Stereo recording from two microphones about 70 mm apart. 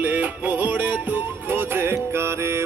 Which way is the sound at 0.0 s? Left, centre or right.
Right.